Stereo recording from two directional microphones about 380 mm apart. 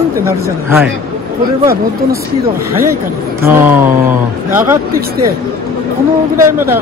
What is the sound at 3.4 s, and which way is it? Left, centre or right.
Speech, centre.